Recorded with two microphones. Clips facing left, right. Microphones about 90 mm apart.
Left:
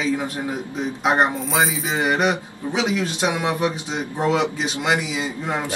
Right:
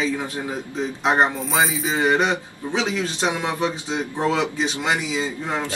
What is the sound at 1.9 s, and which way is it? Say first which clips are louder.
Speech: right 1 dB; 10° left (ahead or behind).